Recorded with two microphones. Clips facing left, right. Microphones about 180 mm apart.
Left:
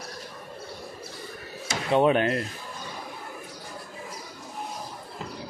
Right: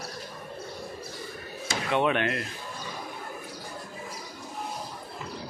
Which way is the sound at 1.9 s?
35° left (ahead or behind).